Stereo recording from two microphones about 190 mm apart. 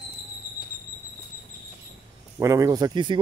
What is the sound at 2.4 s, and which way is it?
Speech, 15° right (ahead or behind).